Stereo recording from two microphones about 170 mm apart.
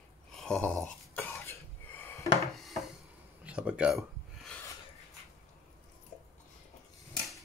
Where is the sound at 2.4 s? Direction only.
Centre (ahead or behind).